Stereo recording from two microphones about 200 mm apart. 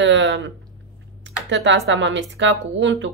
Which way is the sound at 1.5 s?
65° right (ahead or behind).